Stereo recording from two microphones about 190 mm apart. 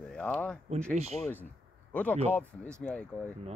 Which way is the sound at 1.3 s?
10° left (ahead or behind).